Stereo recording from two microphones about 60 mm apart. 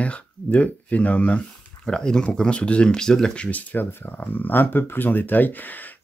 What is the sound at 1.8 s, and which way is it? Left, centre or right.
Speech, centre.